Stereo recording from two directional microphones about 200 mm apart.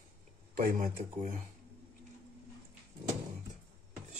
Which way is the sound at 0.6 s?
45° right (ahead or behind).